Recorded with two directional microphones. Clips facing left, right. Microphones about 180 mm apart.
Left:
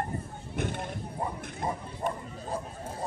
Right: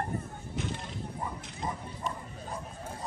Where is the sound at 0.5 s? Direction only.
55° left (ahead or behind).